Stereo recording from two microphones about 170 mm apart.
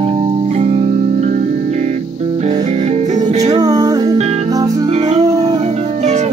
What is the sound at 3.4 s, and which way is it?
Music, 20° right (ahead or behind).